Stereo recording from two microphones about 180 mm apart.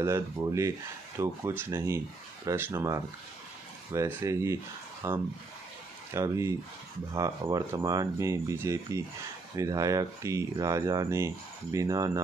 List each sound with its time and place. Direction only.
0.0 s speech: 15° right (ahead or behind)